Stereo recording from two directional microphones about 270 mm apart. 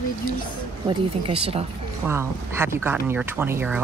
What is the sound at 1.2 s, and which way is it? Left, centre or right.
Speech, right.